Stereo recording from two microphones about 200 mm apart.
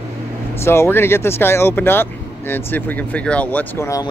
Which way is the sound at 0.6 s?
15° left (ahead or behind).